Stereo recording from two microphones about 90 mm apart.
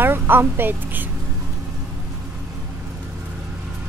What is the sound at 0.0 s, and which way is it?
A woman's voice, 25° right (ahead or behind).